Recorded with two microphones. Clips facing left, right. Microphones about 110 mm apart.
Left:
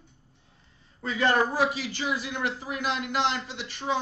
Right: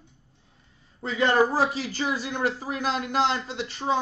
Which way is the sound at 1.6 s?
40° right (ahead or behind).